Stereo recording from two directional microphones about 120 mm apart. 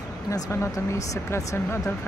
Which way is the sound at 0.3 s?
25° left (ahead or behind).